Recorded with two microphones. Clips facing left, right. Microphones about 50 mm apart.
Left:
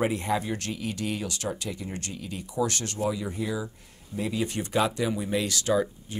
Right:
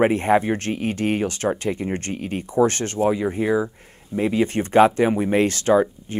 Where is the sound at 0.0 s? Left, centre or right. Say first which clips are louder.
Right 9 dB; right.